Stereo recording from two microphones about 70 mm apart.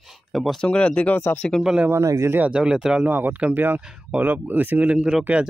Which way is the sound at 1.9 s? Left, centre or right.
Right.